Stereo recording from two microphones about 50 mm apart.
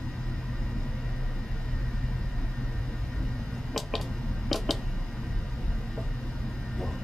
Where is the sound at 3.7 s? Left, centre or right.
Centre.